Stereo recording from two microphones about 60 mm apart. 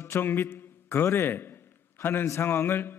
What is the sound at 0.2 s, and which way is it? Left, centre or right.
A man's voice, left.